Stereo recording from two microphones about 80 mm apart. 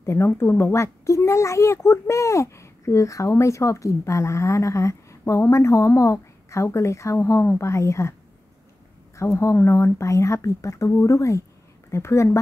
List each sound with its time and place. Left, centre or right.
0.0 s speech: left
9.1 s speech: left